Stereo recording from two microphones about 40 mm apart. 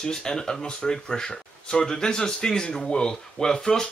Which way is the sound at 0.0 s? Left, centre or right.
Centre.